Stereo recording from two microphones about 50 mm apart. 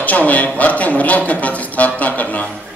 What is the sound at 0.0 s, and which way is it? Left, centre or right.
A man's voice, left.